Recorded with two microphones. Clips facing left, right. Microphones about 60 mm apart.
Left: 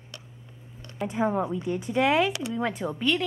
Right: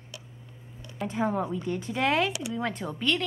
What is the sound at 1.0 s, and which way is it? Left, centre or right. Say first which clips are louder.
A woman's voice: left 2 dB; centre.